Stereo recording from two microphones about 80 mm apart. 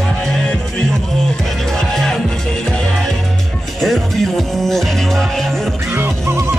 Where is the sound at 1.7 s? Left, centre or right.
Centre.